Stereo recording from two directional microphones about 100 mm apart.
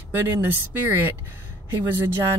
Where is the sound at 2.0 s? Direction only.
25° right (ahead or behind).